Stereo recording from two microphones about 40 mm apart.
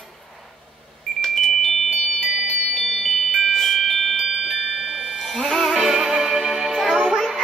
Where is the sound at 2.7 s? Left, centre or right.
Centre.